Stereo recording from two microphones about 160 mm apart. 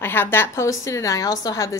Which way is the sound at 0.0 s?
15° left (ahead or behind).